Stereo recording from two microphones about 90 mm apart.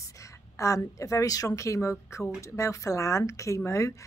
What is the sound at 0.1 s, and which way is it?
A woman's voice, 35° left (ahead or behind).